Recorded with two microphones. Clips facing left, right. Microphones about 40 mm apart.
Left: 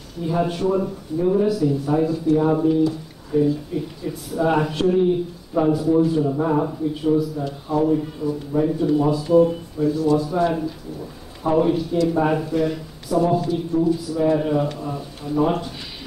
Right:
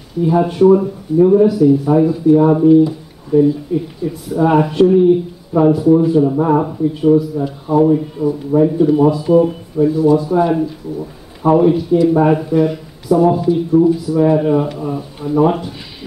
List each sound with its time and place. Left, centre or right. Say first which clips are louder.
0.2 s speech: right 10 dB; centre
6.9 s speech: right 10 dB; centre